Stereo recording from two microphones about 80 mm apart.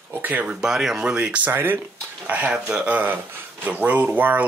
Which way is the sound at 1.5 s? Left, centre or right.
Right.